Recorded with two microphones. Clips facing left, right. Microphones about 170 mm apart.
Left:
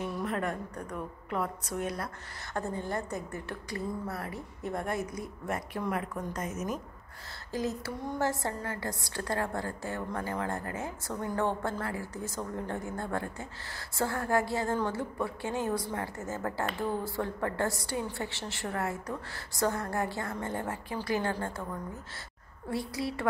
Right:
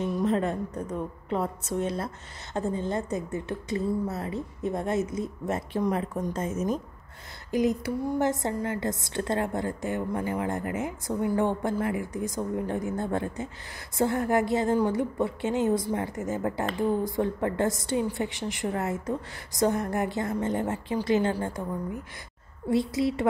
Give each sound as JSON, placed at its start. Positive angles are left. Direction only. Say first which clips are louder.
{"t": 0.2, "sound": "a woman's voice", "louder": "right 8 dB", "side_deg": -25}
{"t": 7.5, "sound": "a woman's voice", "louder": "right 8 dB", "side_deg": -15}